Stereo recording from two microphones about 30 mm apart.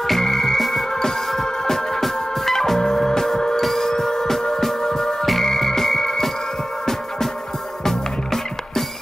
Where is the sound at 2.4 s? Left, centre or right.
Centre.